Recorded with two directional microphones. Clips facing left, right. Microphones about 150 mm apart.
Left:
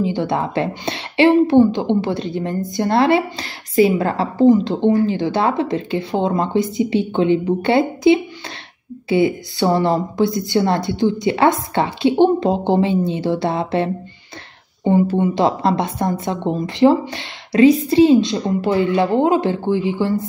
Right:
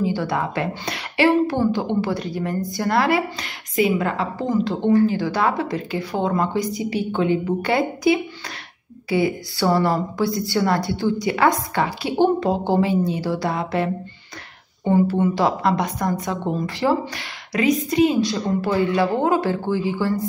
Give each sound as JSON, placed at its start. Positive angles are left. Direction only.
{"t": 0.0, "sound": "a woman's voice", "side_deg": 20}